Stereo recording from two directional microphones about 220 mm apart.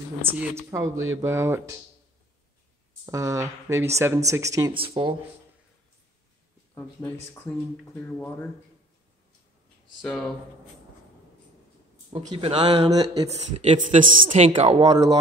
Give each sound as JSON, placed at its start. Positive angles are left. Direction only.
{"t": 0.3, "sound": "speech", "side_deg": -10}
{"t": 0.8, "sound": "speech", "side_deg": -65}
{"t": 1.2, "sound": "speech", "side_deg": -10}
{"t": 3.1, "sound": "speech", "side_deg": -15}
{"t": 6.7, "sound": "speech", "side_deg": 10}
{"t": 10.0, "sound": "speech", "side_deg": 0}
{"t": 12.1, "sound": "speech", "side_deg": -30}
{"t": 13.6, "sound": "speech", "side_deg": -30}
{"t": 14.8, "sound": "speech", "side_deg": -15}